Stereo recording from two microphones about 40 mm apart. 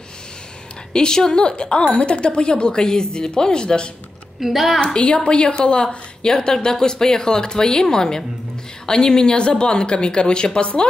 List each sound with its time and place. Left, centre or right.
0.9 s a woman's voice: centre
4.4 s a woman's voice: centre
4.8 s a woman's voice: left